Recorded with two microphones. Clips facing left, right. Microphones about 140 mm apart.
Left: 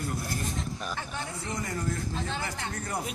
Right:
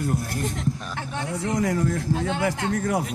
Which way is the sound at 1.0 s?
80° right.